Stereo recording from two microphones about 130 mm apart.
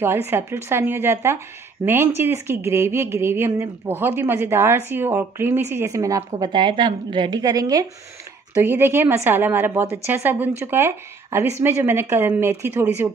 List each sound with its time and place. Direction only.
0.0 s speech: 20° right (ahead or behind)
6.3 s a woman's voice: 35° right (ahead or behind); by 13.1 s 15° right (ahead or behind)